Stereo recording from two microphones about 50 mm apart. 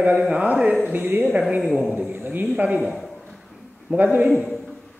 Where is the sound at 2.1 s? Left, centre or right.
Right.